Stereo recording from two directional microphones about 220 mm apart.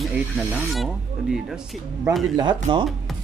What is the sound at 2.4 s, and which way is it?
Speech, 20° right (ahead or behind).